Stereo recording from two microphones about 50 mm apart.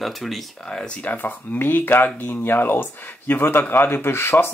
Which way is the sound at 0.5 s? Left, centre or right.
Centre.